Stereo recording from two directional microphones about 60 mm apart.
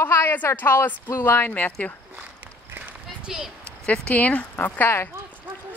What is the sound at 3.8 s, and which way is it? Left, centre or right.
Speech, left.